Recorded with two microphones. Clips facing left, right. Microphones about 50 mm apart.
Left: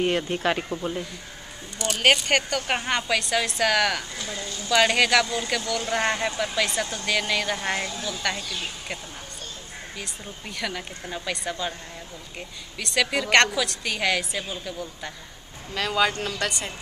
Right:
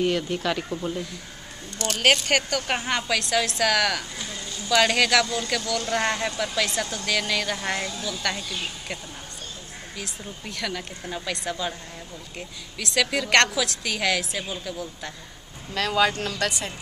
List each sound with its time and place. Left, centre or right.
0.0 s speech: left
1.8 s a woman's voice: centre
9.9 s a woman's voice: centre